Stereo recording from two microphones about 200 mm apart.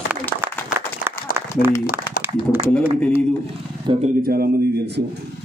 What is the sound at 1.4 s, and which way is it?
Applause, 15° right (ahead or behind).